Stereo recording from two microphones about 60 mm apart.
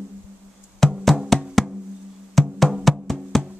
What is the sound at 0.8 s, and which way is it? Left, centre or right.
Music, centre.